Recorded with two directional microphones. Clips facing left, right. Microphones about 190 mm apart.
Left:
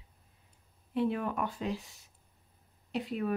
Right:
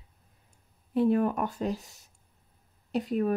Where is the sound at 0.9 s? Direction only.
45° right (ahead or behind).